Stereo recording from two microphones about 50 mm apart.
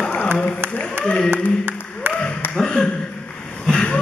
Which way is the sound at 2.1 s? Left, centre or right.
Right.